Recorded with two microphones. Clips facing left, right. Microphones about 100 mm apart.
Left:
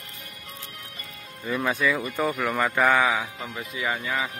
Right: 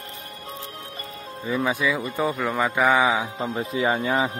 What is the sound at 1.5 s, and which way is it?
Speech, 10° right (ahead or behind).